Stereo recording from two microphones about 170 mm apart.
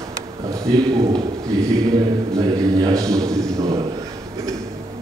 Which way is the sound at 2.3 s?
20° right (ahead or behind).